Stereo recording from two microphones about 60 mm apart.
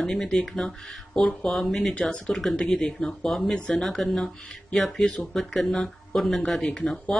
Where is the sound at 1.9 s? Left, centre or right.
Centre.